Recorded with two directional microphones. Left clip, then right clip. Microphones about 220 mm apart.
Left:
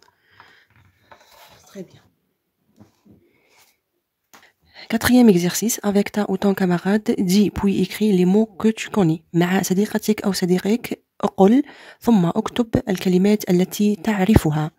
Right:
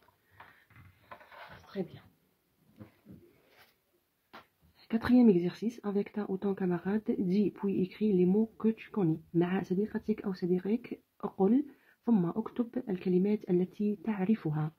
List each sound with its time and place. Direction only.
1.7 s speech: 20° left (ahead or behind)
4.7 s speech: 55° left (ahead or behind)